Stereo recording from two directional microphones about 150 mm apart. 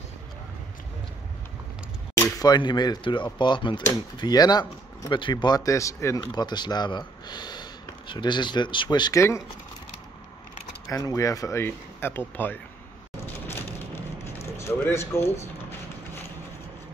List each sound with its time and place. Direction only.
2.1 s speech: 25° left (ahead or behind)
10.9 s speech: 20° left (ahead or behind)
13.5 s a sound: 15° left (ahead or behind)